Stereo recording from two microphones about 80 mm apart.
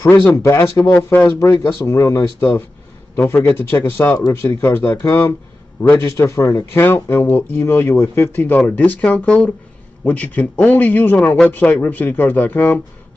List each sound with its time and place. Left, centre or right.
0.1 s speech: left
0.4 s speech: left
3.3 s speech: left